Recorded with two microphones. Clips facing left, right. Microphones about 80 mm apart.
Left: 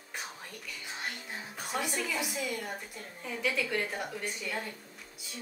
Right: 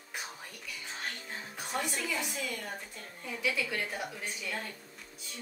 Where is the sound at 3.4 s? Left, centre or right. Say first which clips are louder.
Left 2 dB; centre.